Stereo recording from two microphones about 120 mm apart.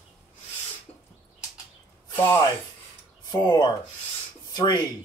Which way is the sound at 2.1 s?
20° left (ahead or behind).